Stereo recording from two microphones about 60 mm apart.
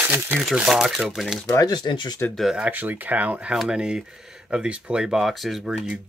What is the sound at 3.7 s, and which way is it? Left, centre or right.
Speech, centre.